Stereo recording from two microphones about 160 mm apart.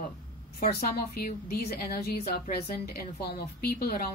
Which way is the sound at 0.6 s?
75° left (ahead or behind).